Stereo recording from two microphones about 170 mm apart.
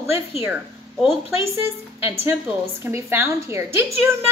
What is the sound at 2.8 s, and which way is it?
A woman's voice, 15° right (ahead or behind).